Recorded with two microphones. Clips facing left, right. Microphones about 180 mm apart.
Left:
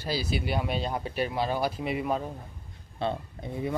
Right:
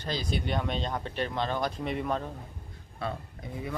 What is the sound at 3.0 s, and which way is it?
Speech, 25° left (ahead or behind).